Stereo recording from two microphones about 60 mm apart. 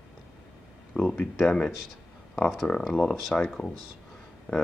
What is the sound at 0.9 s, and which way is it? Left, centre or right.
Speech, centre.